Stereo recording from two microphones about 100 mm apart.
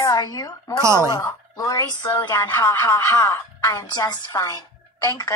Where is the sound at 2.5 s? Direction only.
25° left (ahead or behind).